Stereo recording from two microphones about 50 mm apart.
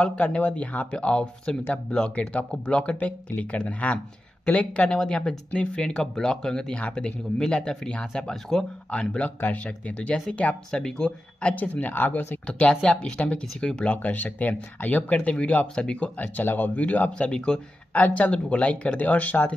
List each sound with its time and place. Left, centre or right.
0.0 s speech: left
8.9 s speech: left
11.5 s speech: left
12.4 s speech: left
13.9 s speech: left
16.2 s speech: left; by 17.6 s centre
17.9 s speech: left